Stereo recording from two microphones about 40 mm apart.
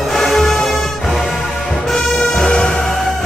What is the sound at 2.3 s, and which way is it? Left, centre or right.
Music, left.